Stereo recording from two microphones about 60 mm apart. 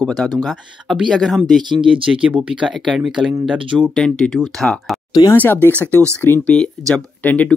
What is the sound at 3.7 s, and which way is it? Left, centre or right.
Speech, right.